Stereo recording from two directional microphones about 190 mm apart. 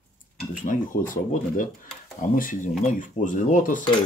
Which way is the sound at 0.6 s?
45° left (ahead or behind).